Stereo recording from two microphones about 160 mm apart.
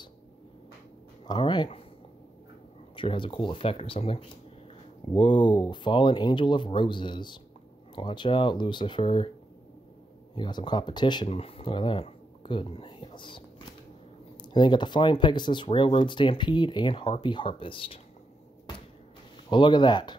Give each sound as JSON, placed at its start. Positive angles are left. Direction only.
{"t": 1.2, "sound": "speech", "side_deg": 25}
{"t": 3.0, "sound": "speech", "side_deg": 30}
{"t": 10.3, "sound": "speech", "side_deg": 30}
{"t": 14.4, "sound": "speech", "side_deg": 30}
{"t": 19.5, "sound": "speech", "side_deg": 30}